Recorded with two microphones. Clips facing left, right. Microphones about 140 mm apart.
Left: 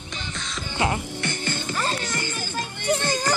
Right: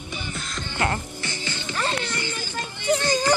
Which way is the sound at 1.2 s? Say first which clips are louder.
Left 4 dB; 50° left (ahead or behind).